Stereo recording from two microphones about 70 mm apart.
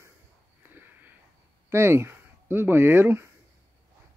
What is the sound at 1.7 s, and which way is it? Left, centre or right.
Speech, right.